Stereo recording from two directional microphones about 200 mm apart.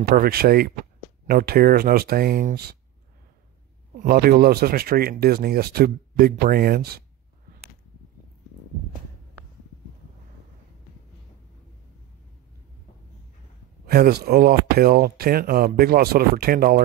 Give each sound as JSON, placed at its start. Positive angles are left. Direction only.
{"t": 0.0, "sound": "speech", "side_deg": -50}
{"t": 4.0, "sound": "speech", "side_deg": -50}
{"t": 13.8, "sound": "speech", "side_deg": -50}